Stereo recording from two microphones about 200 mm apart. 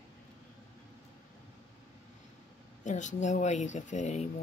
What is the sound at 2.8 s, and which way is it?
Speech, 35° left (ahead or behind).